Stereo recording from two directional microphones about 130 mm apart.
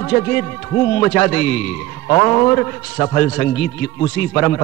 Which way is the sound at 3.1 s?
15° left (ahead or behind).